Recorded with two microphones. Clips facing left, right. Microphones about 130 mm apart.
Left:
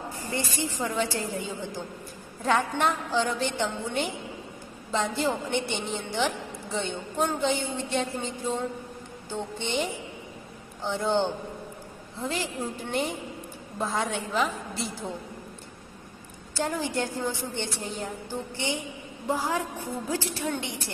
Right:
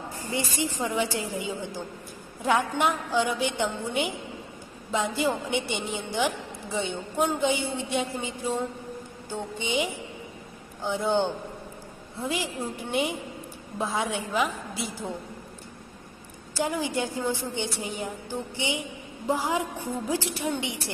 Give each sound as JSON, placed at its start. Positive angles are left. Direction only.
{"t": 0.3, "sound": "a woman's voice", "side_deg": -15}
{"t": 16.5, "sound": "a woman's voice", "side_deg": -10}